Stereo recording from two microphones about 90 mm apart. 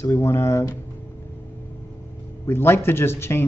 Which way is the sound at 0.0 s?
30° left (ahead or behind).